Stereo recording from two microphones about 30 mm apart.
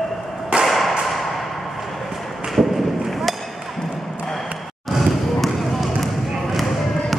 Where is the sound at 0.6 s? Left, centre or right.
Centre.